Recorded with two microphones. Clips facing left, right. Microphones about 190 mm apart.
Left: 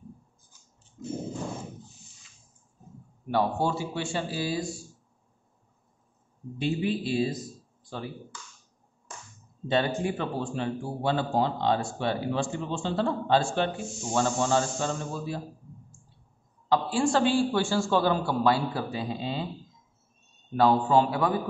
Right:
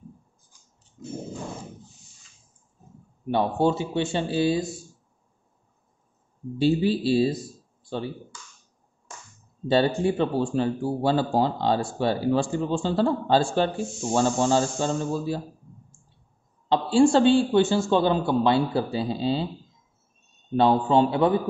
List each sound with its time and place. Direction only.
3.3 s a woman's voice: 20° right (ahead or behind)
6.6 s speech: 35° right (ahead or behind)
9.7 s speech: 35° right (ahead or behind)
16.6 s a woman's voice: 25° right (ahead or behind)
20.5 s a woman's voice: 25° right (ahead or behind)